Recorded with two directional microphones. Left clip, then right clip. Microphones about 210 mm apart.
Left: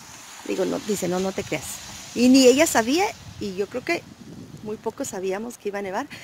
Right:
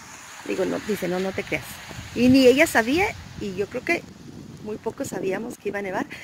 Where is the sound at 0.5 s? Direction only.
15° left (ahead or behind).